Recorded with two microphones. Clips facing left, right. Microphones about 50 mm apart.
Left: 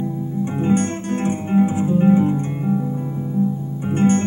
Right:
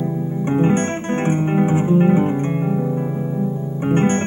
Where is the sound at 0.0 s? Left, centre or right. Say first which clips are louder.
Right 2 dB; right.